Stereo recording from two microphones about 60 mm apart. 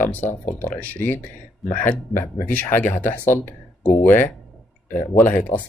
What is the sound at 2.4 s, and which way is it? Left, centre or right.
Speech, left.